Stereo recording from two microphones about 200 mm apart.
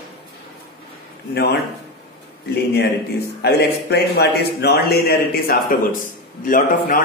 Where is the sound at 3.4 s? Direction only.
55° left (ahead or behind).